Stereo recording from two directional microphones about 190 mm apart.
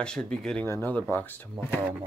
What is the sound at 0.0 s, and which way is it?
Speech, 5° left (ahead or behind).